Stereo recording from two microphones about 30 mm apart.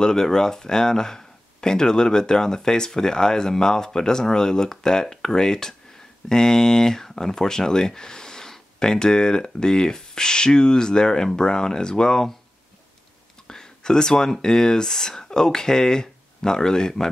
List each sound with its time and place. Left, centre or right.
0.0 s speech: centre
13.5 s a sound: left
14.4 s speech: left